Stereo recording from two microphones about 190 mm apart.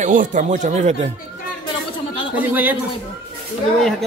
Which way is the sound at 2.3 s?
10° right (ahead or behind).